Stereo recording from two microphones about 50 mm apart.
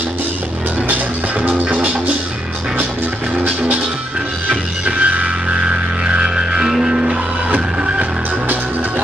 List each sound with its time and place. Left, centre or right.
1.4 s music: right
3.3 s music: right